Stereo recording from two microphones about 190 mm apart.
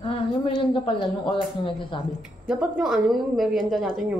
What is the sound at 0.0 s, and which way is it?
Speech, 30° left (ahead or behind).